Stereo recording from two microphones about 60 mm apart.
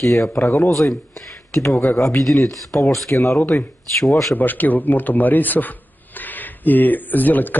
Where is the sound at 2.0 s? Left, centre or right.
Left.